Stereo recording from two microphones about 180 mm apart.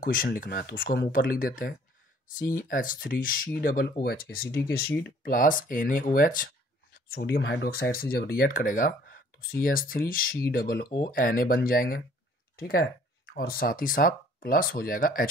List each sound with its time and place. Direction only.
0.0 s speech: 50° left (ahead or behind)